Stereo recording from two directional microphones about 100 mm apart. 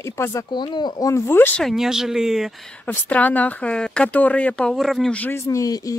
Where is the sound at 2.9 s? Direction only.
15° left (ahead or behind); by 5.1 s centre (ahead or behind).